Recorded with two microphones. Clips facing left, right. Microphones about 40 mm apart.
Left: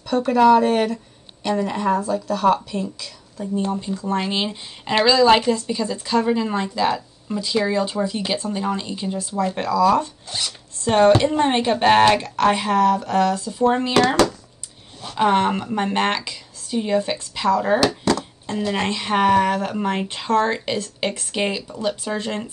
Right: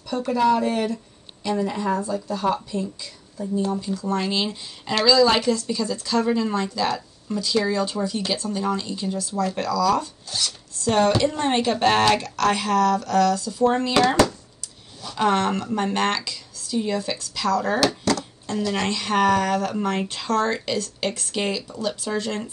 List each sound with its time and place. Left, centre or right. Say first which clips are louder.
0.1 s a woman's voice: left 6 dB; left
3.7 s speech: left 1 dB; left
15.1 s speech: left 3 dB; left